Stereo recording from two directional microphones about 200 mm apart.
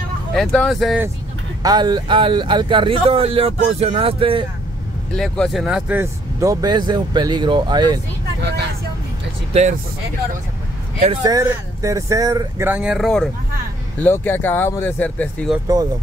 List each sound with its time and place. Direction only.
0.3 s speech: centre (ahead or behind)
1.6 s speech: 20° right (ahead or behind)
5.1 s speech: 5° left (ahead or behind); by 8.0 s 20° right (ahead or behind)
9.5 s speech: 35° right (ahead or behind)
11.2 s speech: 15° right (ahead or behind); by 15.5 s 5° left (ahead or behind)
15.6 s speech: 20° right (ahead or behind)